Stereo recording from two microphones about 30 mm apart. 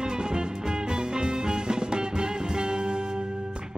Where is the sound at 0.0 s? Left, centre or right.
Right.